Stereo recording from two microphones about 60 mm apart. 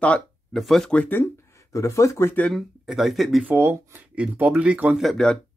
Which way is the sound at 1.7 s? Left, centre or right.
Left.